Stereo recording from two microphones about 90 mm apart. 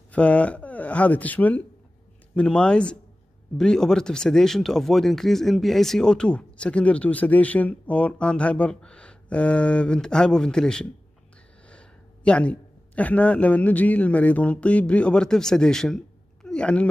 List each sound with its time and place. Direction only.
0.1 s a man's voice: 15° left (ahead or behind)